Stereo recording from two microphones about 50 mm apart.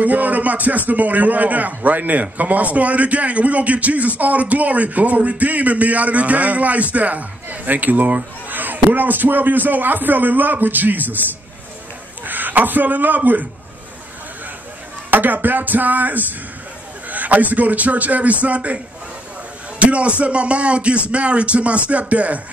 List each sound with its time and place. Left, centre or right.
0.0 s speech: right
12.3 s speech: right
15.0 s speech: right
19.8 s speech: right